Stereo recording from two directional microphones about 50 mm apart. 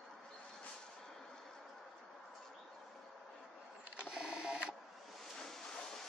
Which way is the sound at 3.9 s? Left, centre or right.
Centre.